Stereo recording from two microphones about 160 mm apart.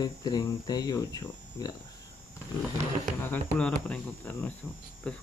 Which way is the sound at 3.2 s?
10° left (ahead or behind).